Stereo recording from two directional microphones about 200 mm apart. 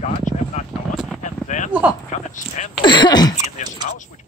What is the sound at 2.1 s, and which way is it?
Speech, 35° left (ahead or behind).